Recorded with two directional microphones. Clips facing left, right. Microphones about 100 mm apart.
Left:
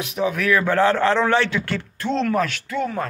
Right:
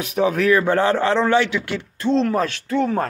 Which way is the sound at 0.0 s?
45° right (ahead or behind).